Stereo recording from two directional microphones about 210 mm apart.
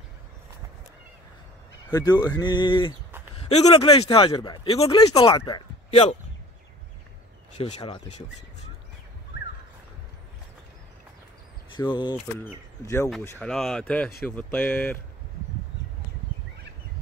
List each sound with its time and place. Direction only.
1.9 s speech: 20° left (ahead or behind)
7.5 s speech: 25° left (ahead or behind)
11.9 s speech: 20° left (ahead or behind)
13.4 s speech: 5° left (ahead or behind)